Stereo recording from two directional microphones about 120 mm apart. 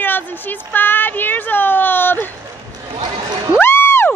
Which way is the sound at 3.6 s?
20° left (ahead or behind).